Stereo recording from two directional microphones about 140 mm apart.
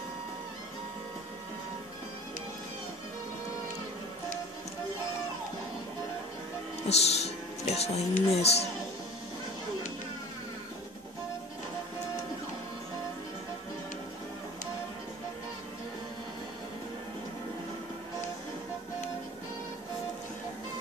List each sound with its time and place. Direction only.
6.9 s speech: 50° left (ahead or behind)